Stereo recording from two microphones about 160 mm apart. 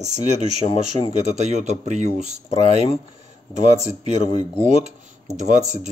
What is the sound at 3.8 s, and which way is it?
Speech, 45° right (ahead or behind).